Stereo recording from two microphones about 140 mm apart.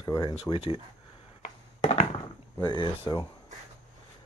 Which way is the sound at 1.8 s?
50° left (ahead or behind).